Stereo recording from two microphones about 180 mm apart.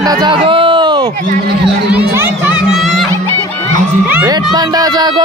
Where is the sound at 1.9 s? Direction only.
15° right (ahead or behind).